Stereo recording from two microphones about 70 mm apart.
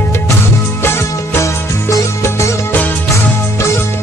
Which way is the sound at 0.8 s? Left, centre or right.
Left.